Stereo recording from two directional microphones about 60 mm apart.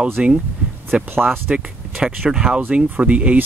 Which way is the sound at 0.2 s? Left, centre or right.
Centre.